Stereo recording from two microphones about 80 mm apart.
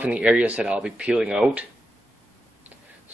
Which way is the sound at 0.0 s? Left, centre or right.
Centre.